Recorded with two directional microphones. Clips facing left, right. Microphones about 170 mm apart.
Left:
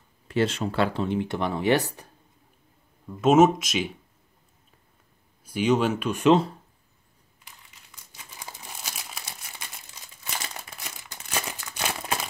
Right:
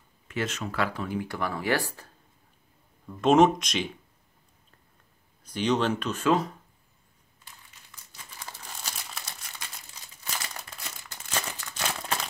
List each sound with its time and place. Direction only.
0.3 s speech: 30° left (ahead or behind)
3.1 s speech: 5° left (ahead or behind)
5.4 s speech: 5° left (ahead or behind); by 6.5 s 25° left (ahead or behind)
7.9 s crumpling: 15° left (ahead or behind)
10.8 s crumpling: 15° left (ahead or behind)